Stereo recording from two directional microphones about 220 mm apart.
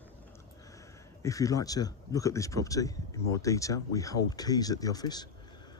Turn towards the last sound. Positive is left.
turn(degrees=20)  # may be behind; listen again after turning